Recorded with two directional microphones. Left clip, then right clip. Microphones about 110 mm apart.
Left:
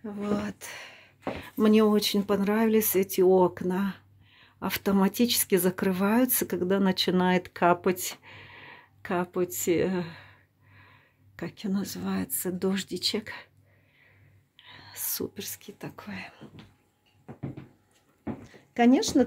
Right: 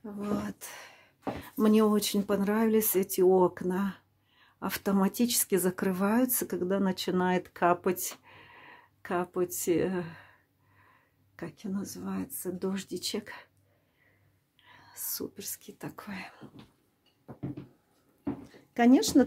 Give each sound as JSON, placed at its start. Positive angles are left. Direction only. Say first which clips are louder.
{"t": 0.0, "sound": "speech", "louder": "left 4 dB", "side_deg": 10}
{"t": 10.9, "sound": "a sound", "louder": "left 5 dB", "side_deg": 15}
{"t": 11.5, "sound": "speech", "louder": "left 7 dB", "side_deg": 30}
{"t": 12.8, "sound": "speech", "louder": "left 6 dB", "side_deg": 10}
{"t": 14.6, "sound": "whispering", "louder": "left 7 dB", "side_deg": 15}
{"t": 15.0, "sound": "speech", "louder": "left 4 dB", "side_deg": 30}
{"t": 15.3, "sound": "speech", "louder": "left 4 dB", "side_deg": 15}
{"t": 15.6, "sound": "speech", "louder": "left 1 dB", "side_deg": -5}
{"t": 18.4, "sound": "a sound", "louder": "left 3 dB", "side_deg": 0}